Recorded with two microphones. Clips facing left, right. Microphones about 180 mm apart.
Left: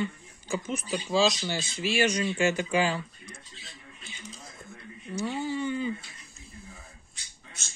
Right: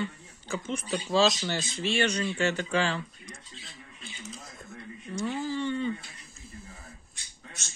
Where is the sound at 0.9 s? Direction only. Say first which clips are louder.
Right 1 dB; centre (ahead or behind).